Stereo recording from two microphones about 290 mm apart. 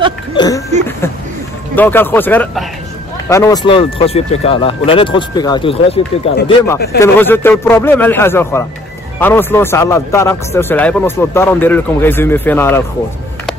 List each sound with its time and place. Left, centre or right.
0.3 s speech: centre
1.8 s speech: centre